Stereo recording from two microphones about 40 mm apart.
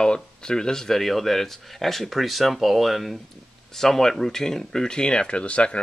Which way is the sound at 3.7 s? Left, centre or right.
Centre.